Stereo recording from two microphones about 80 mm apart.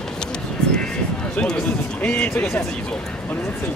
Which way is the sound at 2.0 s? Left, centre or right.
Centre.